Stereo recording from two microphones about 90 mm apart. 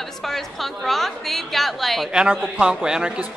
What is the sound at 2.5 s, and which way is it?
Speech, 10° right (ahead or behind).